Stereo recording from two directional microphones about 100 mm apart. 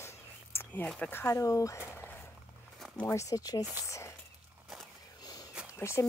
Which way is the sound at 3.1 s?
35° left (ahead or behind).